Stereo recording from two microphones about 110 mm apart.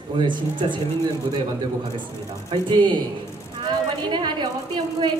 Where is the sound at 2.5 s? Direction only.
45° right (ahead or behind).